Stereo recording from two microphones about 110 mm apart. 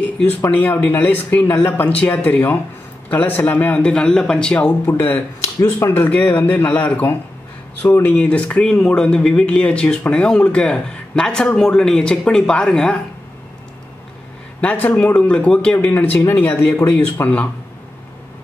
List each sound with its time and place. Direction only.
0.0 s speech: 15° left (ahead or behind)
14.6 s speech: 15° left (ahead or behind)